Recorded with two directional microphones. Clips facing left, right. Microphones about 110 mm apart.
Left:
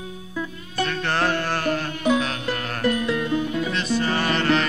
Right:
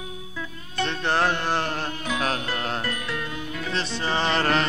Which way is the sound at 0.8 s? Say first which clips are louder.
Even; 20° right (ahead or behind).